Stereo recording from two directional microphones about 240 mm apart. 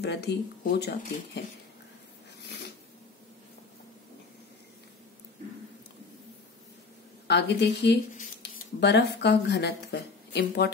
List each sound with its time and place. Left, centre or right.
0.0 s speech: left
7.2 s speech: left
8.1 s speech: left